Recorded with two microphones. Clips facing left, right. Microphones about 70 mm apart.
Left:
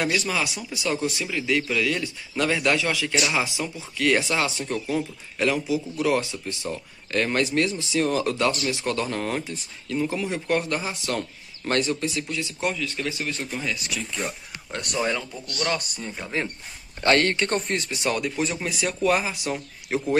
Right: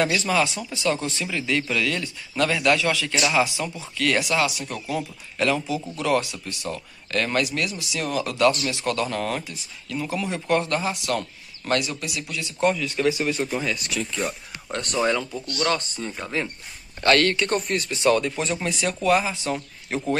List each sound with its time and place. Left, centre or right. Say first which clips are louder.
0.3 s speech: right 4 dB; centre; by 12.5 s left
12.5 s speech: right 7 dB; centre
12.8 s speech: right 6 dB; centre
13.7 s speech: right 3 dB; centre
16.2 s speech: left 1 dB; right
17.0 s speech: right 1 dB; left
18.4 s speech: right 1 dB; centre
19.0 s speech: right 2 dB; left
19.4 s a man's voice: right 2 dB; centre